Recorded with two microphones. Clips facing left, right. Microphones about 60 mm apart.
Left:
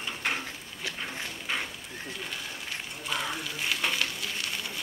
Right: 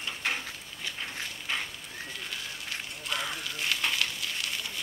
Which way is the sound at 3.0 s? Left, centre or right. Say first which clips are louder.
Left 2 dB; centre.